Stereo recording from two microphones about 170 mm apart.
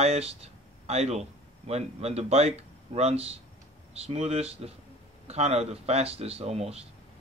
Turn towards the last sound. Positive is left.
turn(degrees=-40)  # may be behind; listen again after turning